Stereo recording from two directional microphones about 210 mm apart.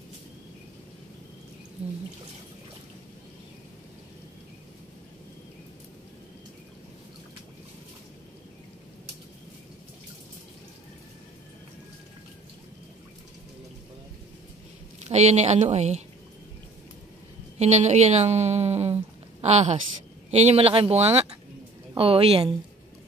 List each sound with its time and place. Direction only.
15.0 s a woman's voice: 30° right (ahead or behind)
17.6 s a woman's voice: 35° right (ahead or behind)